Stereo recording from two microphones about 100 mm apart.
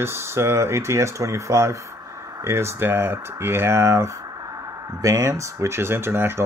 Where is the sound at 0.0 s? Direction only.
25° right (ahead or behind).